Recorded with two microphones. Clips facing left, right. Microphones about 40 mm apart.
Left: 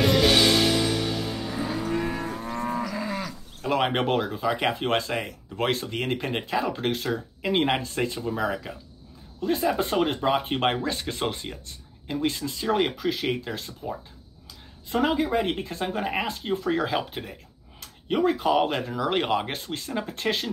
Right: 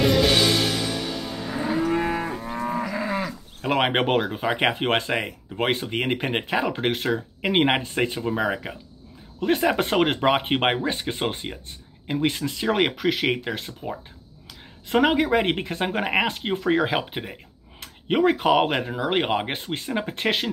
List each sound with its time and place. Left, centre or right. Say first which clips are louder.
0.0 s music: right 1 dB; centre
1.7 s moo: right 7 dB; right
2.7 s cattle: right 6 dB; right
3.6 s speech: right 2 dB; right
5.6 s speech: right 2 dB; right
9.4 s speech: right 3 dB; right
10.6 s speech: right 2 dB; right
12.1 s speech: right 3 dB; right
18.9 s speech: right 1 dB; right